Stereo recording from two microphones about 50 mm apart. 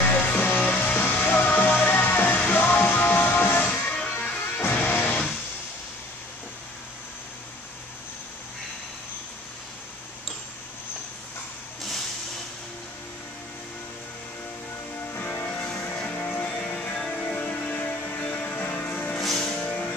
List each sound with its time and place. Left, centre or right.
0.0 s music: left
3.7 s music: left
4.8 s music: left
15.4 s music: left
19.1 s music: centre
19.6 s music: left